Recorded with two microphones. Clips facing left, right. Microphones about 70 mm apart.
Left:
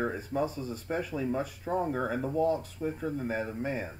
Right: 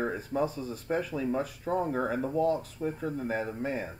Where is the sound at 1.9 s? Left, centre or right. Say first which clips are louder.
Right 1 dB; right.